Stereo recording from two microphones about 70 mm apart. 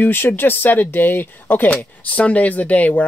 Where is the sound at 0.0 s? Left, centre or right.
Left.